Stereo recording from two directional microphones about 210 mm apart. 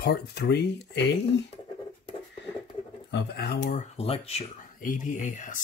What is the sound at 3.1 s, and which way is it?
Speech, 50° left (ahead or behind).